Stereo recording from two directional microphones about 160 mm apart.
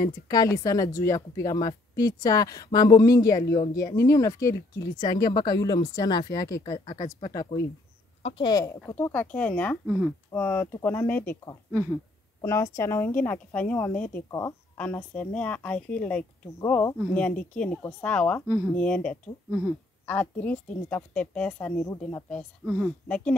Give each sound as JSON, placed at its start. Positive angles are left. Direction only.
{"t": 0.3, "sound": "a woman's voice", "side_deg": 20}
{"t": 8.2, "sound": "a woman's voice", "side_deg": 40}
{"t": 8.5, "sound": "a woman's voice", "side_deg": 25}
{"t": 9.1, "sound": "a woman's voice", "side_deg": 10}
{"t": 10.3, "sound": "a woman's voice", "side_deg": 15}
{"t": 12.4, "sound": "a woman's voice", "side_deg": 20}